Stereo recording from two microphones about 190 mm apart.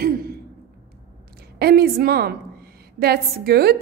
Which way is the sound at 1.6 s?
55° right (ahead or behind).